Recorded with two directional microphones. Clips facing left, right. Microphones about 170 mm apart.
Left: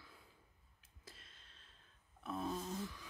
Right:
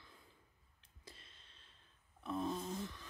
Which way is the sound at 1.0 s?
Centre (ahead or behind).